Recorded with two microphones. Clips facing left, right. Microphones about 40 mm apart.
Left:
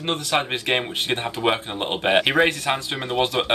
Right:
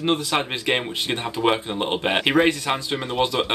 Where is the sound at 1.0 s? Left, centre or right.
Left.